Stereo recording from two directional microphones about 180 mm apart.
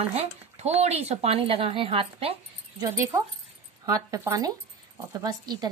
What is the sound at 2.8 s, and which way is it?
Speech, 15° right (ahead or behind).